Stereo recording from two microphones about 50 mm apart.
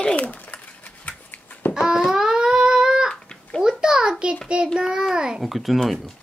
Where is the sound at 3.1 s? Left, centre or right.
Centre.